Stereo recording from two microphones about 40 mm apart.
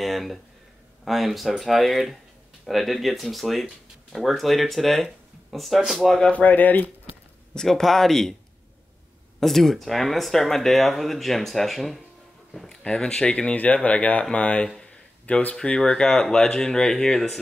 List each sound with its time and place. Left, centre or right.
0.0 s speech: centre
6.3 s speech: left
7.6 s speech: centre
9.4 s speech: centre
12.6 s speech: centre
14.8 s a sound: left
15.5 s speech: centre